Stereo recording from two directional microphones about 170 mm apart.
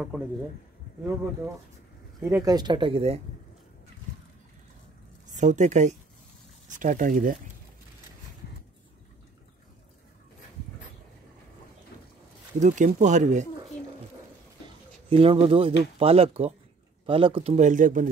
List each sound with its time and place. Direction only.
2.2 s speech: 20° right (ahead or behind)
5.3 s speech: 45° right (ahead or behind)
12.5 s speech: 45° right (ahead or behind)
15.0 s speech: 35° right (ahead or behind); by 18.1 s 50° right (ahead or behind)